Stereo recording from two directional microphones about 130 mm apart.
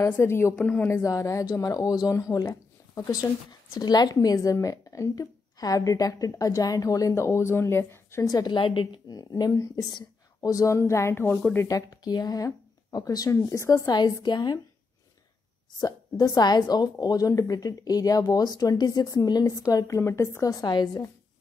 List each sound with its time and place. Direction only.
0.0 s a woman's voice: 20° left (ahead or behind)
11.6 s a woman's voice: 30° left (ahead or behind)
15.8 s a woman's voice: 30° left (ahead or behind)